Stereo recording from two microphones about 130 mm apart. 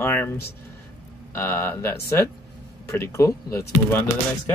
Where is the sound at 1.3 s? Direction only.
20° left (ahead or behind).